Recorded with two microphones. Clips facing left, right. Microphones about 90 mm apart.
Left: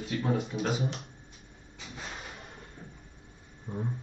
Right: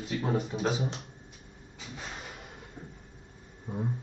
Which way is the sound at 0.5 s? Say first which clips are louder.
Right 2 dB; 30° right (ahead or behind).